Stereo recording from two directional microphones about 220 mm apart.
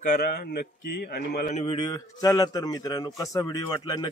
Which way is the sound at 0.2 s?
45° left (ahead or behind).